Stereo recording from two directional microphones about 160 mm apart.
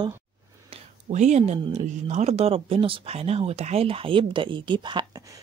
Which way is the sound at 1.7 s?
45° right (ahead or behind).